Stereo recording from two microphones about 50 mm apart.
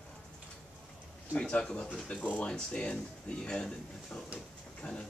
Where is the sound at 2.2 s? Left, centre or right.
Left.